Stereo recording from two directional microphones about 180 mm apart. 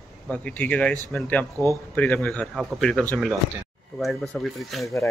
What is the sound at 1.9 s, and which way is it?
Speech, 10° left (ahead or behind).